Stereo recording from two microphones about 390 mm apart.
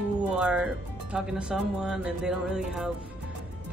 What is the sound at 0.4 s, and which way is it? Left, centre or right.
Speech, centre.